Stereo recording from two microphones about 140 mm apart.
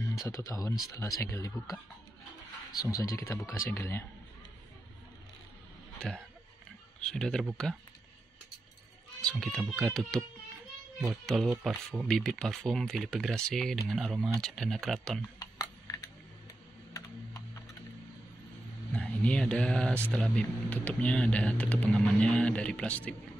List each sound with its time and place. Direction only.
0.3 s speech: 20° left (ahead or behind)
2.8 s speech: 25° left (ahead or behind)
5.9 s a sound: 5° left (ahead or behind)
7.0 s speech: 5° left (ahead or behind)
9.2 s speech: 5° left (ahead or behind)
15.3 s a sound: 25° left (ahead or behind)
16.9 s computer keyboard: 25° left (ahead or behind)
18.9 s speech: 5° left (ahead or behind)